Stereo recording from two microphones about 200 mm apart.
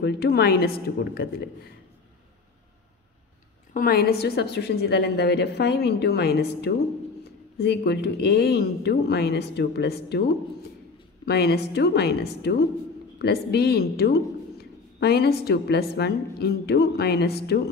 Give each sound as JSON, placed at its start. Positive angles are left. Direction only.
{"t": 0.0, "sound": "speech", "side_deg": 55}
{"t": 3.7, "sound": "a woman's voice", "side_deg": 50}